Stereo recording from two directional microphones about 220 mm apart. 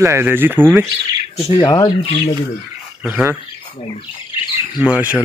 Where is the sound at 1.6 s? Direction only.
20° left (ahead or behind).